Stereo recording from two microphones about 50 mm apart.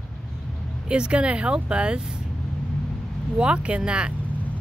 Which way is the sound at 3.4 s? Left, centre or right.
Right.